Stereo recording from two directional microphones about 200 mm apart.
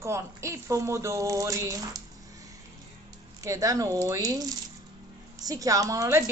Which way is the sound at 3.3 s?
15° right (ahead or behind).